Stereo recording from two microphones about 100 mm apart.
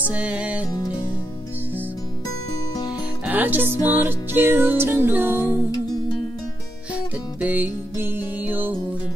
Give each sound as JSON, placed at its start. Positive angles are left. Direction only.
{"t": 0.1, "sound": "music", "side_deg": -15}
{"t": 3.3, "sound": "music", "side_deg": -20}
{"t": 7.3, "sound": "music", "side_deg": -15}